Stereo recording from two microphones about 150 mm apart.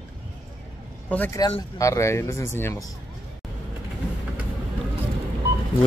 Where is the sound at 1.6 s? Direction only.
20° left (ahead or behind).